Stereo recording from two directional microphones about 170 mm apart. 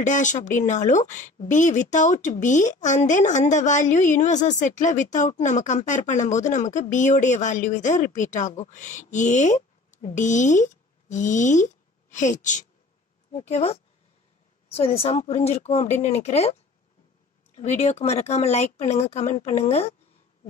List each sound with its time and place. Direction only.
0.0 s speech: 45° left (ahead or behind)
17.6 s speech: 40° left (ahead or behind)